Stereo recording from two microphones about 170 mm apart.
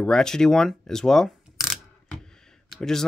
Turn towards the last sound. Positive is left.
turn(degrees=0)  # may be behind; listen again after turning